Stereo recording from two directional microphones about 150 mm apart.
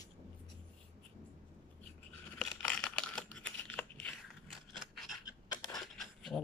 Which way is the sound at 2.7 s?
5° left (ahead or behind).